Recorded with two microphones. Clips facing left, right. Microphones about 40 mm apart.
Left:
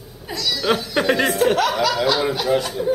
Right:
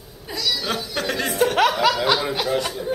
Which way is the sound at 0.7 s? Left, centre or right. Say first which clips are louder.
Left 6 dB; left.